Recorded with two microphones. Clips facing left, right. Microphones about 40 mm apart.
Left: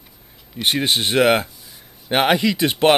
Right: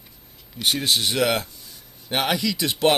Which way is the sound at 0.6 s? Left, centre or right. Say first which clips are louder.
Left 3 dB; left.